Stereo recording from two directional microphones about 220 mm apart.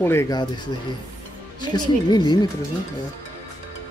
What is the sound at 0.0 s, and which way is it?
A woman's voice, 10° left (ahead or behind).